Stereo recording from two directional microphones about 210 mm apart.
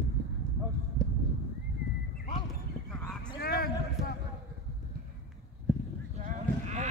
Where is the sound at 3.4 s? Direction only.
45° left (ahead or behind).